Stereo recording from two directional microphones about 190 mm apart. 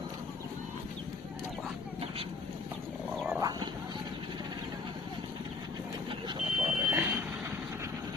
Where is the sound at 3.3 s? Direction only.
20° right (ahead or behind).